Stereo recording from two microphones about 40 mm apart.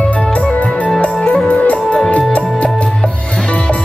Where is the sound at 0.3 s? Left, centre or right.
Left.